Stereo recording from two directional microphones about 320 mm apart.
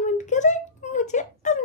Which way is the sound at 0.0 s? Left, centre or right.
Left.